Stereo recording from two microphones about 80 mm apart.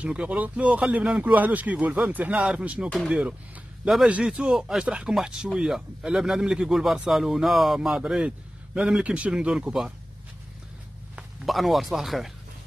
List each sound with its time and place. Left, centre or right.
0.0 s a man's voice: centre
11.4 s a man's voice: centre